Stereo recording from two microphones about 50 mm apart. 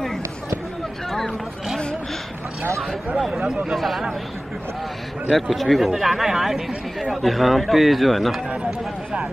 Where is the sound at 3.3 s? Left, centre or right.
Centre.